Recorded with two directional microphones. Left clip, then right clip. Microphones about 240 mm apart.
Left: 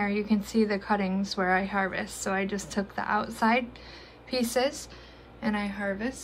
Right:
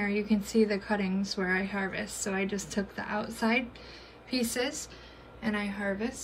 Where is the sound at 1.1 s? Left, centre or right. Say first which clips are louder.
Left 2 dB; left.